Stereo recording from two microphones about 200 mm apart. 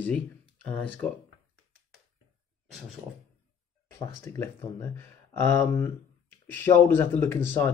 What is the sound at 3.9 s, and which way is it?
Speech, 15° left (ahead or behind).